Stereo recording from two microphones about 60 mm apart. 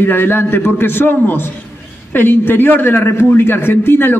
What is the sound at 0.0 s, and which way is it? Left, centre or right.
A man's voice, left.